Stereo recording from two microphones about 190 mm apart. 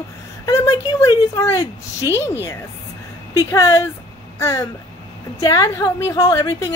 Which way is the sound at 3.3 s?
15° left (ahead or behind).